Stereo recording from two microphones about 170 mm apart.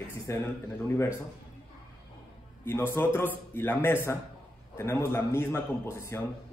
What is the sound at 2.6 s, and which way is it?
A man's voice, 15° left (ahead or behind).